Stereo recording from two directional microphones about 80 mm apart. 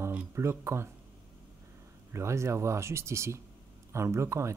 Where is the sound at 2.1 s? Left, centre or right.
Right.